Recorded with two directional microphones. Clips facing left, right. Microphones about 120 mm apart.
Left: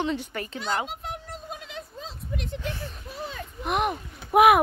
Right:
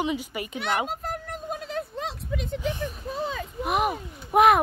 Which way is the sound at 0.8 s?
40° right (ahead or behind).